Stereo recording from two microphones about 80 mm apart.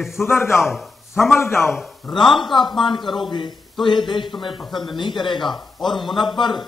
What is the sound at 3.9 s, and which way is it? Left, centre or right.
A man's voice, left.